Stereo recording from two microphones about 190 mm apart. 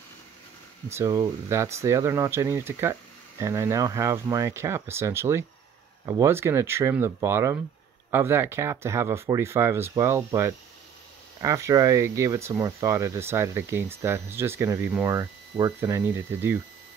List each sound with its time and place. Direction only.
0.8 s speech: 15° right (ahead or behind)